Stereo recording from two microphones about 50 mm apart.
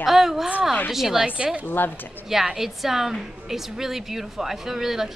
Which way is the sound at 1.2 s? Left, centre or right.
Right.